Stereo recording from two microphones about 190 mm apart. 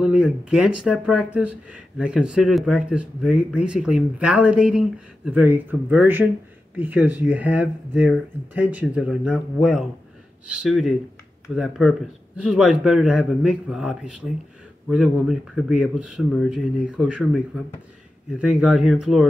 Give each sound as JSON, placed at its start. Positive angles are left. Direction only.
{"t": 0.0, "sound": "speech", "side_deg": -5}
{"t": 18.4, "sound": "speech", "side_deg": -5}